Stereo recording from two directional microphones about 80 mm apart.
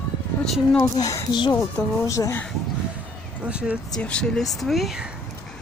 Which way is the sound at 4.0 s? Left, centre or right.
Centre.